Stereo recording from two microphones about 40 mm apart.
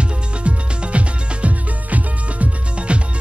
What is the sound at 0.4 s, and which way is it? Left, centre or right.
Music, right.